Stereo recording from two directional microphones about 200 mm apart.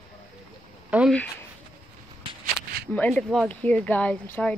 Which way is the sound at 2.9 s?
5° left (ahead or behind).